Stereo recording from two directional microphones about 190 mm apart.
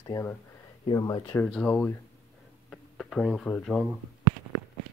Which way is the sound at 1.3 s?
5° left (ahead or behind).